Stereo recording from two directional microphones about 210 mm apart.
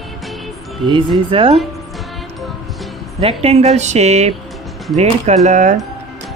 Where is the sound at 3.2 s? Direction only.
30° right (ahead or behind).